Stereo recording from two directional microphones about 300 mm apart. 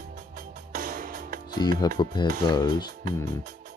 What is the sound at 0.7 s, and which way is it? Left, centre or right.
Music, right.